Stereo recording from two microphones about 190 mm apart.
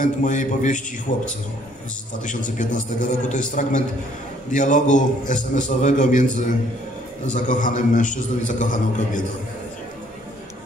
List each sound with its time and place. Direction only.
0.0 s a man's voice: 40° left (ahead or behind)
2.2 s a man's voice: 40° left (ahead or behind)
7.3 s a man's voice: 40° left (ahead or behind)